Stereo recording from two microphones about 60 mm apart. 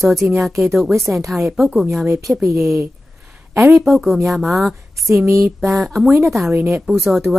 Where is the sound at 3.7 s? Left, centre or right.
Centre.